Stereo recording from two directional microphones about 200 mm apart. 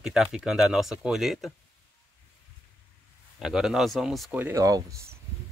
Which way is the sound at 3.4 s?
Centre (ahead or behind).